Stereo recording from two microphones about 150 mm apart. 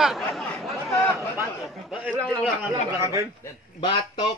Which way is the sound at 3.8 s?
30° left (ahead or behind).